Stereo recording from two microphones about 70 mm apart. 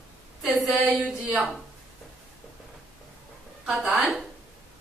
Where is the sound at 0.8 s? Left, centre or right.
Right.